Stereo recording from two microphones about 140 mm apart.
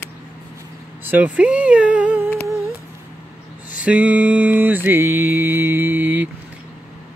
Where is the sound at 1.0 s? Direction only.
10° right (ahead or behind).